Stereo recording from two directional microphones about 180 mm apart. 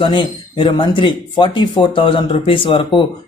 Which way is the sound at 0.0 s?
25° left (ahead or behind).